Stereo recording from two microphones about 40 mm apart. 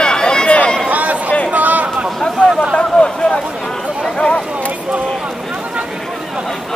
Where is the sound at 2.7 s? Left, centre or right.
Left.